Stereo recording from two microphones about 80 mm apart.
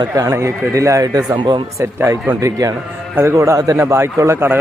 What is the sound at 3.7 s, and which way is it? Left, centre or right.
Speech, right.